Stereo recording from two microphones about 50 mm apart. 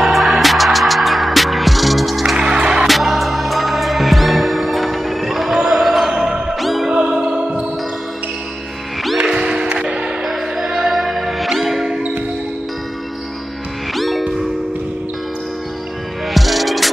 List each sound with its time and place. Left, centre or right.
0.0 s music: centre
2.3 s music: centre
2.9 s music: centre
6.9 s music: centre
9.2 s music: centre
10.2 s music: centre
13.9 s music: centre
16.3 s music: centre